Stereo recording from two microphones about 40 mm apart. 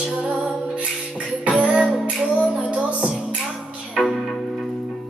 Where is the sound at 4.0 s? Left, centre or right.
Centre.